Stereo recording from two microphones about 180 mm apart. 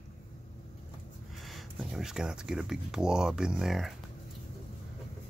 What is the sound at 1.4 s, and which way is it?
Speech, centre (ahead or behind).